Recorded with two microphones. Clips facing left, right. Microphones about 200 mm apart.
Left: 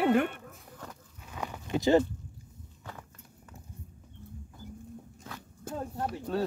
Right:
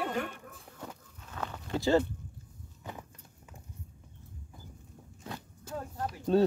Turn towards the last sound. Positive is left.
turn(degrees=-25)  # may be behind; listen again after turning